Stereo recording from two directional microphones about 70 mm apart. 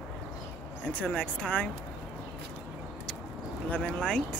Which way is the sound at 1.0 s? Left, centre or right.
Centre.